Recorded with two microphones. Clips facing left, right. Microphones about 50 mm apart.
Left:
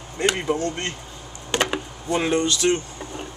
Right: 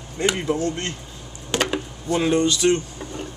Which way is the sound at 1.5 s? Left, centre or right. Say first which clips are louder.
Even; centre.